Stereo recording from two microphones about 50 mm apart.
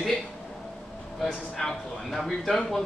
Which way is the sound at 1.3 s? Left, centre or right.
Left.